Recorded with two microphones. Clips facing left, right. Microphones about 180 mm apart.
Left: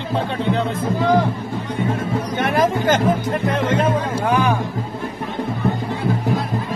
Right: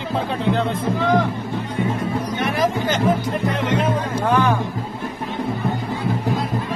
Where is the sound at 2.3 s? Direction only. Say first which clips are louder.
Left 4 dB; 50° left (ahead or behind).